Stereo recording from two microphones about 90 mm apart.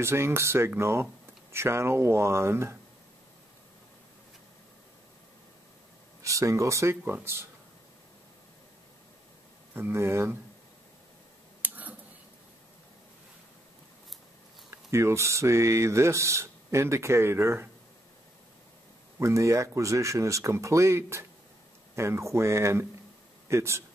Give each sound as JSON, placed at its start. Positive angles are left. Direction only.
{"t": 0.0, "sound": "speech", "side_deg": -30}
{"t": 6.2, "sound": "speech", "side_deg": -35}
{"t": 9.8, "sound": "speech", "side_deg": -25}
{"t": 11.6, "sound": "a sound", "side_deg": -20}
{"t": 14.7, "sound": "speech", "side_deg": -30}
{"t": 19.1, "sound": "speech", "side_deg": -35}